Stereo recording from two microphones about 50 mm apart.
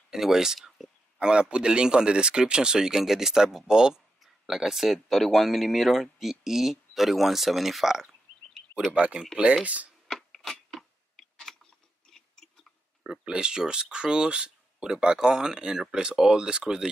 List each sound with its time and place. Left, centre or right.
0.1 s speech: centre
0.6 s a sound: centre
1.2 s speech: centre
8.9 s speech: right
10.0 s a sound: centre
13.0 s speech: centre